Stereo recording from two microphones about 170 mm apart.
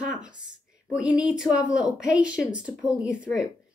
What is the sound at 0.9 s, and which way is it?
A woman's voice, 5° right (ahead or behind).